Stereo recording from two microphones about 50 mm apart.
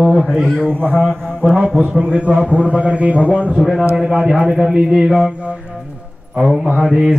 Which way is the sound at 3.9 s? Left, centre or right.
Centre.